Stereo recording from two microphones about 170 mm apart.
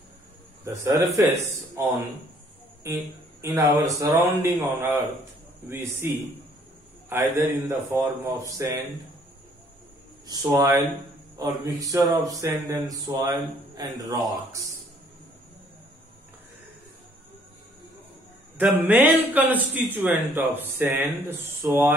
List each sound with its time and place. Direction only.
0.8 s speech: 20° right (ahead or behind)
10.2 s speech: 20° right (ahead or behind)
18.6 s speech: 10° right (ahead or behind)